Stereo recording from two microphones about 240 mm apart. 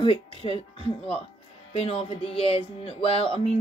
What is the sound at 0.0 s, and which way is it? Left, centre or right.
Speech, left.